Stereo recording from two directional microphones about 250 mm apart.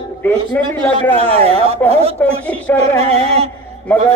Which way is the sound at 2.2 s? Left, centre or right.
Centre.